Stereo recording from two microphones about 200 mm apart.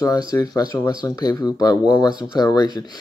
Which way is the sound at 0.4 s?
20° left (ahead or behind).